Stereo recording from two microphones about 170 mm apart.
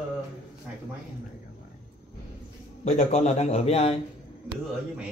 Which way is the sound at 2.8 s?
40° left (ahead or behind).